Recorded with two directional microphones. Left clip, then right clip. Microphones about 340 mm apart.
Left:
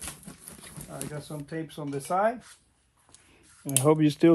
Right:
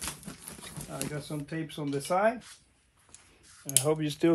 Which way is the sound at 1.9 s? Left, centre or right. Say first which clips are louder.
Left 1 dB; centre.